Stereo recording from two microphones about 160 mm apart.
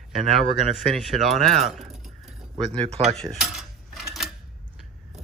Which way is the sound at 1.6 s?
Centre (ahead or behind).